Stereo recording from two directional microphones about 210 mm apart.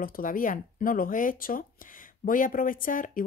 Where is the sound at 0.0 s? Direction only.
40° left (ahead or behind).